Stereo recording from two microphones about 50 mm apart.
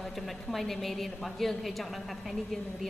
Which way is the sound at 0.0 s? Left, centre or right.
Centre.